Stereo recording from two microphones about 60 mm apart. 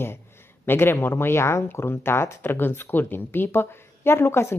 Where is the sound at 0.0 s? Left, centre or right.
Left.